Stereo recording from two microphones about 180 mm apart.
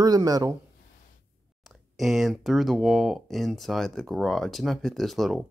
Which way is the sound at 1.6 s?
Centre (ahead or behind).